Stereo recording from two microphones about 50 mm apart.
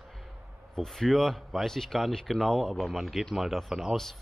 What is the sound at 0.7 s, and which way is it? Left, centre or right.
A man's voice, centre.